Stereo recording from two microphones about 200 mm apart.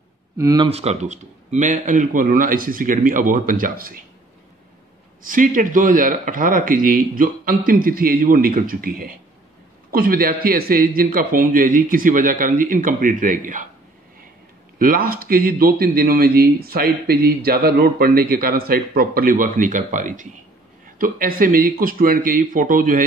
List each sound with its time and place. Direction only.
0.4 s speech: 20° right (ahead or behind)
0.7 s a man's voice: 30° right (ahead or behind)
5.2 s a man's voice: 40° right (ahead or behind)
14.8 s a man's voice: 45° right (ahead or behind)